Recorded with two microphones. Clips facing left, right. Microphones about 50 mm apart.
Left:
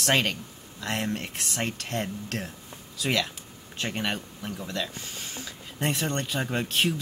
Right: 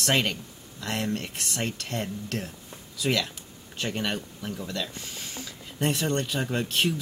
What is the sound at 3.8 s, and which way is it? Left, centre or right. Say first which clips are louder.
Speech: even; left.